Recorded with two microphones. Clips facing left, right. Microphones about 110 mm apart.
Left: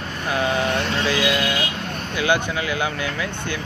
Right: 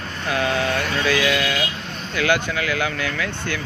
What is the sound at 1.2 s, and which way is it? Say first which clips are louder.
Speech: even; 15° left (ahead or behind).